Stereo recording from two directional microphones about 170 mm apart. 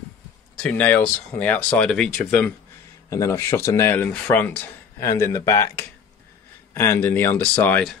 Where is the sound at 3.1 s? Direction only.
20° left (ahead or behind).